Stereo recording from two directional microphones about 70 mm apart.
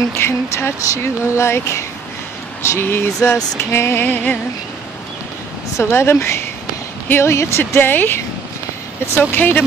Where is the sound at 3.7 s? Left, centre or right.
Left.